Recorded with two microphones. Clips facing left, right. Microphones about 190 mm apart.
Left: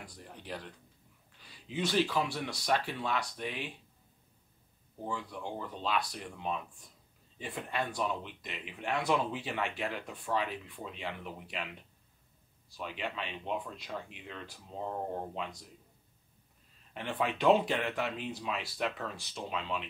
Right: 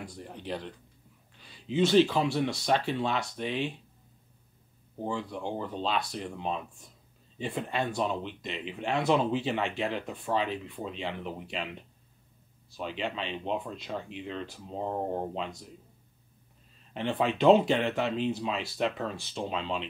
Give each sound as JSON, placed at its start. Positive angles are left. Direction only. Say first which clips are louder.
{"t": 0.0, "sound": "speech", "louder": "right 8 dB", "side_deg": -25}
{"t": 5.0, "sound": "speech", "louder": "right 5 dB", "side_deg": -25}
{"t": 16.9, "sound": "speech", "louder": "right 5 dB", "side_deg": -25}